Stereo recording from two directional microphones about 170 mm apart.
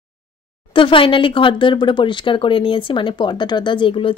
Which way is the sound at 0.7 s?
30° left (ahead or behind).